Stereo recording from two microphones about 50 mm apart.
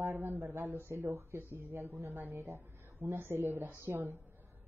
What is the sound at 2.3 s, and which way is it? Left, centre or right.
Speech, right.